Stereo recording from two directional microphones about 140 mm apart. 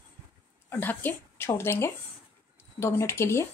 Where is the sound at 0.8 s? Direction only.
15° left (ahead or behind).